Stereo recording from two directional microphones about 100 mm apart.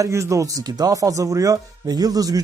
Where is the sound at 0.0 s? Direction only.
30° right (ahead or behind).